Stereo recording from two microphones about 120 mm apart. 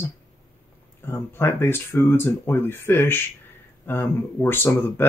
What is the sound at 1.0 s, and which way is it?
Speech, 20° left (ahead or behind).